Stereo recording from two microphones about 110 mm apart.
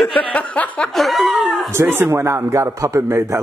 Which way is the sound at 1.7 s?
20° right (ahead or behind).